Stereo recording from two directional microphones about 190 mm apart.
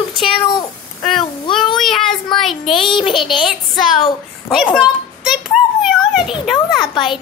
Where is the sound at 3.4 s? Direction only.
Centre (ahead or behind).